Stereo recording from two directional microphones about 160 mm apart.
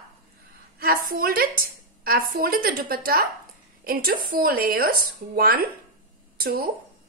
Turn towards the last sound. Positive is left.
turn(degrees=-65)  # may be behind; listen again after turning